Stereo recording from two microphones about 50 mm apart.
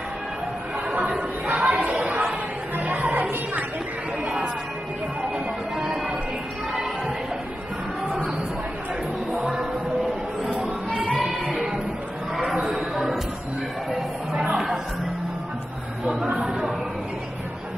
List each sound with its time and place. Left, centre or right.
1.0 s chatter: centre
1.7 s chatter: right
2.0 s a sound: right
5.8 s music: centre
10.5 s a sound: right
11.1 s music: centre
12.9 s music: centre
14.3 s music: centre